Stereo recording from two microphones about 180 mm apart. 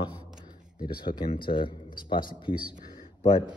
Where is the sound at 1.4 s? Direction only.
25° left (ahead or behind).